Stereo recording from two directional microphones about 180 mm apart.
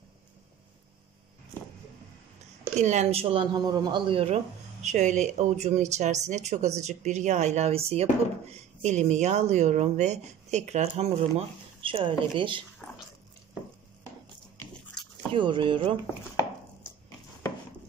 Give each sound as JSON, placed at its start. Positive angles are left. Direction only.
{"t": 2.8, "sound": "speech", "side_deg": -40}
{"t": 15.3, "sound": "speech", "side_deg": -25}